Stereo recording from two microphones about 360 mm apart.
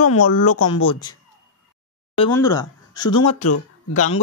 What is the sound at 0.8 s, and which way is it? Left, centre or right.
Speech, centre.